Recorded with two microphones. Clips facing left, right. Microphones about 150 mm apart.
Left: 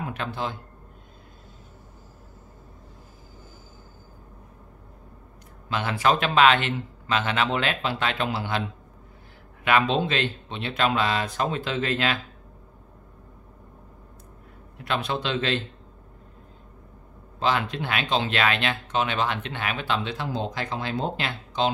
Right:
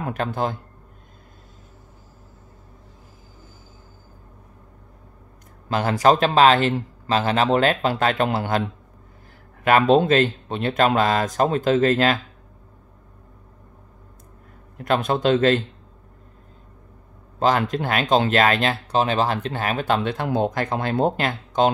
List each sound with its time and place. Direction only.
0.0 s a man's voice: 45° right (ahead or behind)
5.7 s speech: 40° right (ahead or behind)
9.7 s speech: 45° right (ahead or behind)
14.8 s speech: 45° right (ahead or behind)
17.4 s speech: 45° right (ahead or behind)